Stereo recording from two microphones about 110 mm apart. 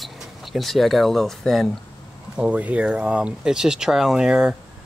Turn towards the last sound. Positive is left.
turn(degrees=-5)  # may be behind; listen again after turning